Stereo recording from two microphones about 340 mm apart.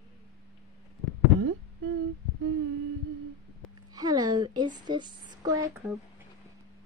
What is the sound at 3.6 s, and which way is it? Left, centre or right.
Speech, centre.